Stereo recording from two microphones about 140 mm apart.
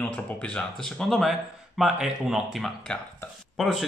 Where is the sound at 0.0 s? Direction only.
10° left (ahead or behind).